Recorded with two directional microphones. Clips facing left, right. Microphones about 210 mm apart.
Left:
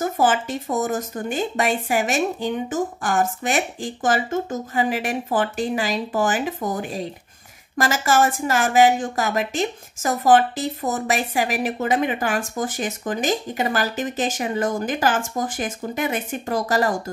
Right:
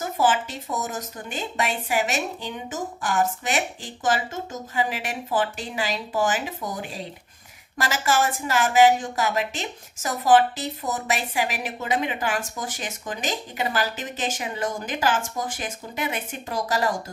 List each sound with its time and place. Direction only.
0.0 s speech: 50° left (ahead or behind)